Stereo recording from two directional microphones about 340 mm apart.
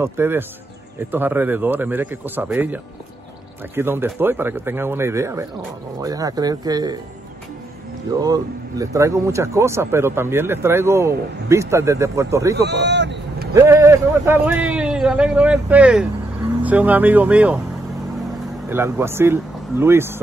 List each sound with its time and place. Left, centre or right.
0.0 s a man's voice: centre
8.2 s speech: centre
12.5 s vehicle: right
13.6 s a man's voice: centre
18.7 s speech: centre